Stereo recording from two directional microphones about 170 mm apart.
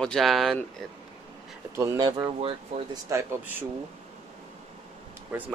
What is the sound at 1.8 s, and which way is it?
Speech, 25° right (ahead or behind).